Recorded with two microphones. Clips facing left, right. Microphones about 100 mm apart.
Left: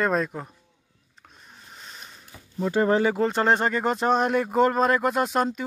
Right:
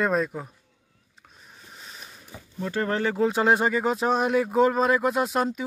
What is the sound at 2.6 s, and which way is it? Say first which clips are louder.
Speech: left 5 dB; 20° left (ahead or behind).